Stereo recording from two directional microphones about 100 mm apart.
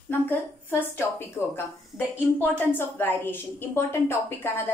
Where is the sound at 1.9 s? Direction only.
20° left (ahead or behind).